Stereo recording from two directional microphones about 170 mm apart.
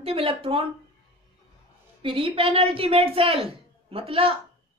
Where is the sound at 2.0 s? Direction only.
30° right (ahead or behind).